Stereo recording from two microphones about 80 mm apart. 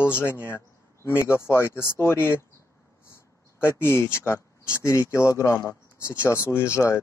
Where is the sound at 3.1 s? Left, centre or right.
Left.